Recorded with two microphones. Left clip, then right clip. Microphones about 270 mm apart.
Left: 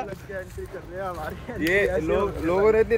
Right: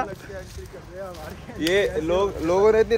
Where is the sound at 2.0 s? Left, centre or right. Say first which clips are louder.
Right 2 dB; right.